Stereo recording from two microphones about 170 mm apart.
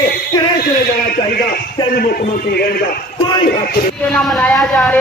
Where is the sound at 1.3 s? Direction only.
60° left (ahead or behind).